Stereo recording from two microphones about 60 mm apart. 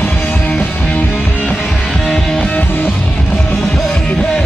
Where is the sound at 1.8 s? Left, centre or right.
Centre.